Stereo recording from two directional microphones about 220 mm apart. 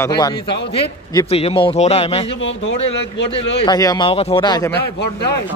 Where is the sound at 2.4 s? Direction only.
55° left (ahead or behind).